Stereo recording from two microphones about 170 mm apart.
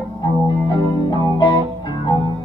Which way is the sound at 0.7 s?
25° left (ahead or behind).